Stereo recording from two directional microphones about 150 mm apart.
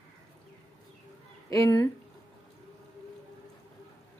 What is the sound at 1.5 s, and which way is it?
Speech, 20° left (ahead or behind).